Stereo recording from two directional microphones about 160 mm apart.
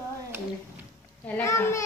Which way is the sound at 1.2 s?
15° left (ahead or behind).